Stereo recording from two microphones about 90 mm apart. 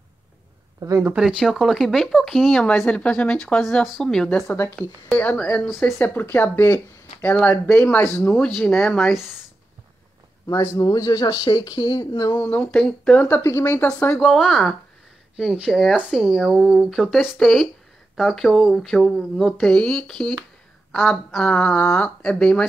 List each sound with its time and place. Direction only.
0.7 s speech: 40° right (ahead or behind)
1.2 s speech: 5° right (ahead or behind); by 3.6 s 10° left (ahead or behind)
3.8 s speech: centre (ahead or behind)
5.1 s speech: 15° left (ahead or behind)
8.5 s speech: 5° left (ahead or behind)
10.8 s speech: 45° left (ahead or behind)
12.4 s speech: 20° left (ahead or behind)
13.4 s speech: 30° left (ahead or behind)
14.1 s speech: 5° left (ahead or behind)
19.7 s speech: 10° left (ahead or behind)